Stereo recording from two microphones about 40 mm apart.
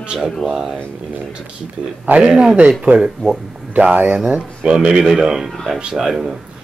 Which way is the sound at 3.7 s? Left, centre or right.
Right.